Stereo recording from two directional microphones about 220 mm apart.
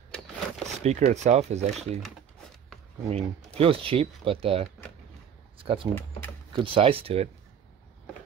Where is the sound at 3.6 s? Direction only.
25° right (ahead or behind).